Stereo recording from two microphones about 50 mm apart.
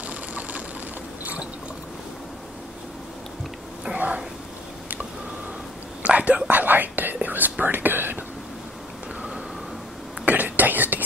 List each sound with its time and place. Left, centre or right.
0.0 s vehicle: right
1.2 s mechanisms: right
3.9 s a sound: right
6.0 s whispering: right
10.2 s whispering: right